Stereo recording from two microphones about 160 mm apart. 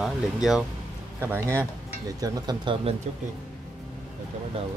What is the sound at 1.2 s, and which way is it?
Speech, 15° right (ahead or behind).